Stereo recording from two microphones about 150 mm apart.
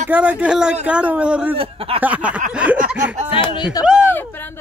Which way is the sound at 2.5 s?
10° right (ahead or behind).